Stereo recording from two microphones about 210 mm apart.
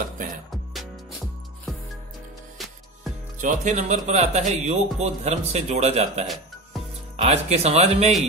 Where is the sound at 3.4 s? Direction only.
35° right (ahead or behind).